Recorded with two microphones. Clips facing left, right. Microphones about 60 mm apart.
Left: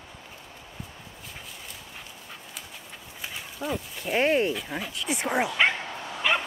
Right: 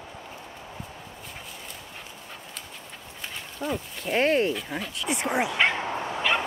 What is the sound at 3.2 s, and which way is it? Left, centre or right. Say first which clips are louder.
Speech: right 1 dB; centre.